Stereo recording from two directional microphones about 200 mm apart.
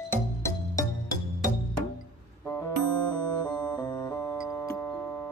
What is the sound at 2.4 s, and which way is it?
Music, 15° left (ahead or behind).